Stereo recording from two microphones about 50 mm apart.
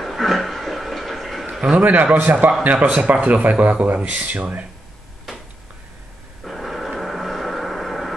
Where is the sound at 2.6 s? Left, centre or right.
Right.